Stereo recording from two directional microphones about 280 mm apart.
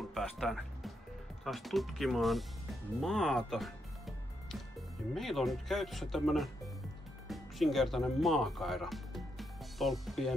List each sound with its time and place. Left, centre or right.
0.1 s speech: centre